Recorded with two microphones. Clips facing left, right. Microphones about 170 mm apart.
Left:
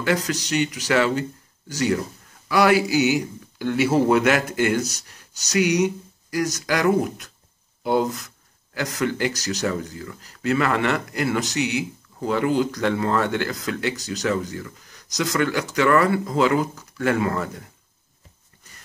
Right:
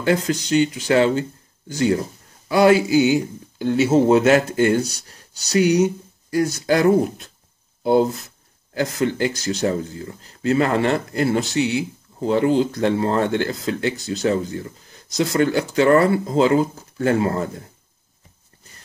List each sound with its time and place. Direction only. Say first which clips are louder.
0.0 s speech: right 3 dB; 30° right (ahead or behind)